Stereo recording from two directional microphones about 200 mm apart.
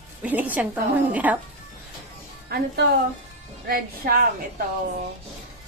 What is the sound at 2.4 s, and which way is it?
A woman's voice, 50° right (ahead or behind).